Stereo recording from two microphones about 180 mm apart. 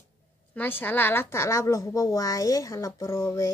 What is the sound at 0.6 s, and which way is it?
Speech, 10° left (ahead or behind).